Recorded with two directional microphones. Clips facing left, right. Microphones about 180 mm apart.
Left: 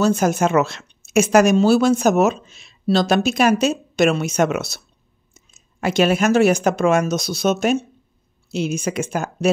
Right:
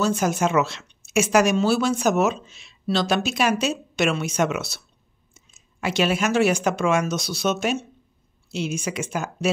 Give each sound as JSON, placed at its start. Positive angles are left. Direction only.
{"t": 0.0, "sound": "a woman's voice", "side_deg": 45}